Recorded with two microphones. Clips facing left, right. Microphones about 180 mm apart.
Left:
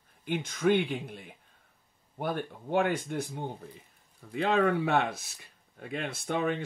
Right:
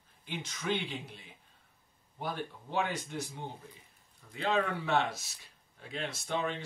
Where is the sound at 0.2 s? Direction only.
55° left (ahead or behind).